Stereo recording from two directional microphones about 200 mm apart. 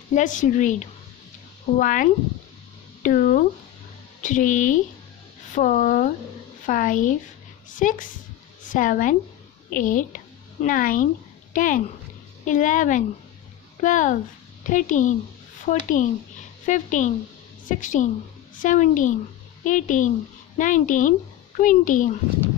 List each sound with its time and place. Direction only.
0.1 s a woman's voice: 40° left (ahead or behind)